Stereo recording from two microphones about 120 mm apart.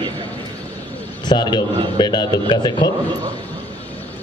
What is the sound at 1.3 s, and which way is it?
A man's voice, 40° left (ahead or behind).